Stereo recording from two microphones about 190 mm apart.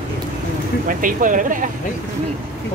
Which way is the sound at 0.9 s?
45° right (ahead or behind).